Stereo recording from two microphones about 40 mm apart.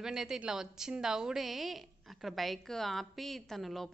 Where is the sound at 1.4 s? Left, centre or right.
Centre.